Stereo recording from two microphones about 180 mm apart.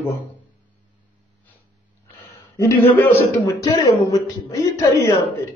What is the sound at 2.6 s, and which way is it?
A man's voice, 15° left (ahead or behind).